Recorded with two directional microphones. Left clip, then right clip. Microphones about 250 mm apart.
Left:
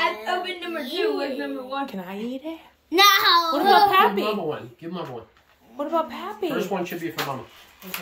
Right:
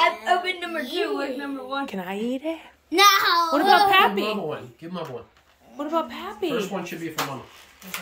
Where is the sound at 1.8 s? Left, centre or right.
Centre.